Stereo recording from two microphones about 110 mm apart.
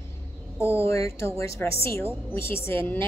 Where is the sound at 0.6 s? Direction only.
25° left (ahead or behind).